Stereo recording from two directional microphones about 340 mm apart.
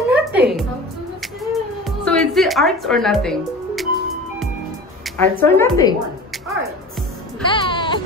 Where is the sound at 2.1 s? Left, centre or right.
Centre.